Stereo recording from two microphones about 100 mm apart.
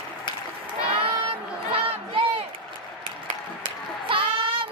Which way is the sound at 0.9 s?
65° right (ahead or behind).